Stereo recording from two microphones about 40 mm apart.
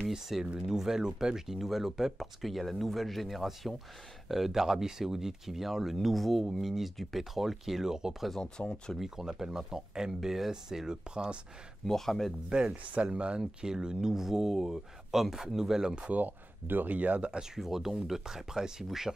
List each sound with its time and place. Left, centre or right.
0.1 s speech: centre
1.5 s speech: centre
8.4 s speech: left
8.9 s speech: centre
11.8 s speech: centre
12.4 s speech: right
16.1 s speech: right
16.9 s speech: right
17.6 s speech: centre